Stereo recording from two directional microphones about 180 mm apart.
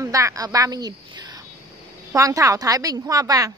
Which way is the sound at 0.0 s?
20° right (ahead or behind).